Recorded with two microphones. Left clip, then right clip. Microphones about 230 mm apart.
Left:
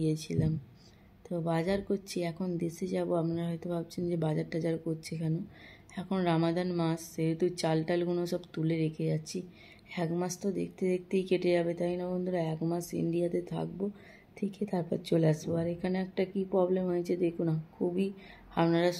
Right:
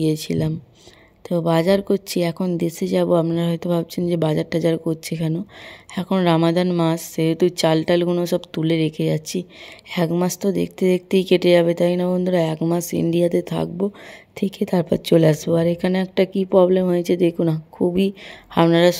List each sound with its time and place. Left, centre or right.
0.0 s speech: right